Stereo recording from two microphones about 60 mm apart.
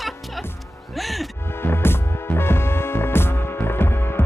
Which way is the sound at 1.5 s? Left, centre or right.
Left.